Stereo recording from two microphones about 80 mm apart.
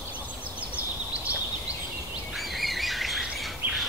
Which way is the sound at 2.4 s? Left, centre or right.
Centre.